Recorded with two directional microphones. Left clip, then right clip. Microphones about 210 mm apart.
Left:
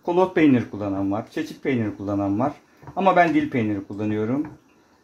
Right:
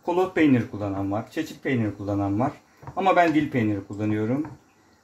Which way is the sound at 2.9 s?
25° left (ahead or behind).